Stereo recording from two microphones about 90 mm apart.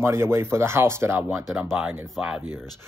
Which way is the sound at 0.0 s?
30° right (ahead or behind).